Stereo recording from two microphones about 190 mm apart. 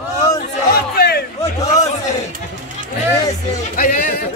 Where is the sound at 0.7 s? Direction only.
55° left (ahead or behind).